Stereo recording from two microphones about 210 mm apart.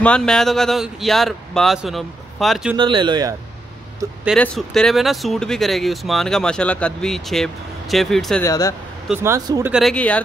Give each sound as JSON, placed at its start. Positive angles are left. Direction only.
{"t": 0.0, "sound": "speech", "side_deg": 5}
{"t": 2.8, "sound": "speech", "side_deg": -20}
{"t": 4.0, "sound": "speech", "side_deg": -5}
{"t": 8.5, "sound": "speech", "side_deg": 15}
{"t": 9.1, "sound": "speech", "side_deg": -15}